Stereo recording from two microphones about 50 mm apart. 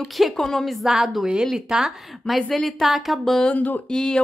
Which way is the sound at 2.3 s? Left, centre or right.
Centre.